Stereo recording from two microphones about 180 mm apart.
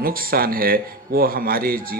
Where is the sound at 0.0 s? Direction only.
55° right (ahead or behind).